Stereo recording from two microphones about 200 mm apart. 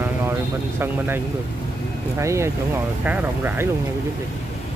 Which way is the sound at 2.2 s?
15° right (ahead or behind).